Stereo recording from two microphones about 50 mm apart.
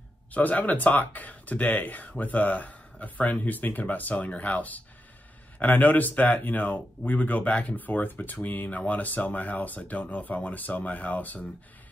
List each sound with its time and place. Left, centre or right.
0.3 s speech: left